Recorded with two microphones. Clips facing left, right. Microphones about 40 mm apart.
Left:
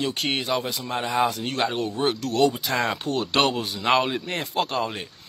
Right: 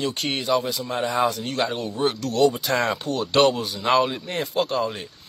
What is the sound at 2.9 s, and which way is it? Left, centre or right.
Speech, left.